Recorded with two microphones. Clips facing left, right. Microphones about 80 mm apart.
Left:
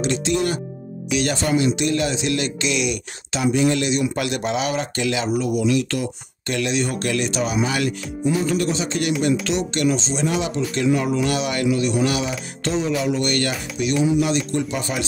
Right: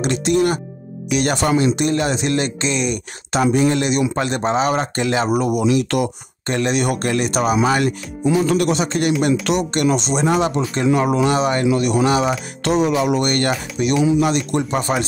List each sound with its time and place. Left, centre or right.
0.2 s speech: right
1.6 s speech: right
5.3 s speech: right
6.4 s speech: right
8.5 s speech: right
12.6 s speech: right